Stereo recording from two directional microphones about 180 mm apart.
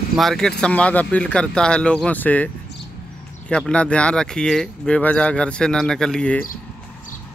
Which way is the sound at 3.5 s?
5° left (ahead or behind).